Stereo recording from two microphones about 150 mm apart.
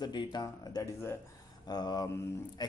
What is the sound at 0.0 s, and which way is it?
Speech, 30° left (ahead or behind).